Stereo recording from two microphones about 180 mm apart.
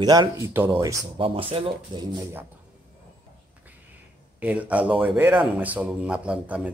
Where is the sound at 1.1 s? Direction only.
30° right (ahead or behind).